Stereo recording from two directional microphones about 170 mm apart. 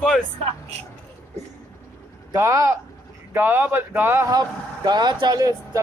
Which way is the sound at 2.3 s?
20° right (ahead or behind).